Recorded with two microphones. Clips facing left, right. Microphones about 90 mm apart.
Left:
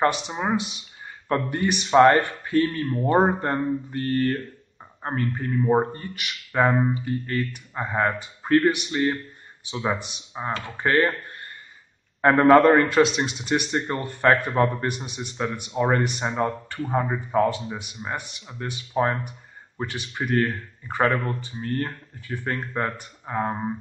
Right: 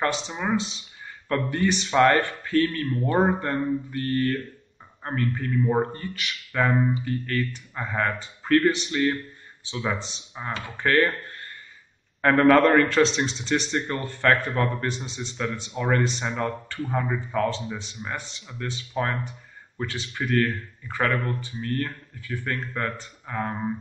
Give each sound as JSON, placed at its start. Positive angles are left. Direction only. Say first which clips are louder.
{"t": 0.3, "sound": "speech", "louder": "left 1 dB", "side_deg": 25}
{"t": 0.6, "sound": "a man's voice", "louder": "even", "side_deg": 15}
{"t": 13.7, "sound": "speech", "louder": "left 1 dB", "side_deg": 25}
{"t": 17.7, "sound": "a man's voice", "louder": "left 2 dB", "side_deg": 15}